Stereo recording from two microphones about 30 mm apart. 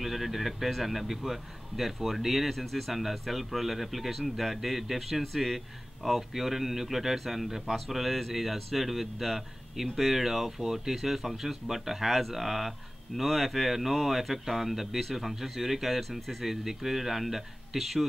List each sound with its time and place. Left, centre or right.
0.0 s a man's voice: centre